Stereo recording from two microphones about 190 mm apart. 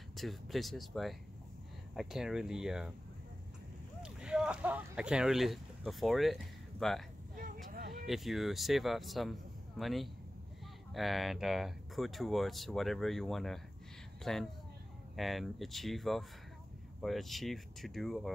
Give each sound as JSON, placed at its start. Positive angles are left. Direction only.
{"t": 0.1, "sound": "speech", "side_deg": 0}
{"t": 4.0, "sound": "speech", "side_deg": -5}
{"t": 7.3, "sound": "vehicle", "side_deg": -45}
{"t": 8.1, "sound": "speech", "side_deg": 0}